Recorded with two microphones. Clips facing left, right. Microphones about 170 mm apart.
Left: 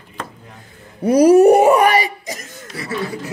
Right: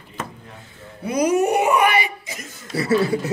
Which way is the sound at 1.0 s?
35° left (ahead or behind).